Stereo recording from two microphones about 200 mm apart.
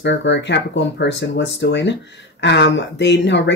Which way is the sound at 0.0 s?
65° left (ahead or behind).